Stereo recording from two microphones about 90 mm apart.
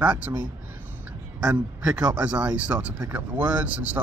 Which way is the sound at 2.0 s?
15° right (ahead or behind).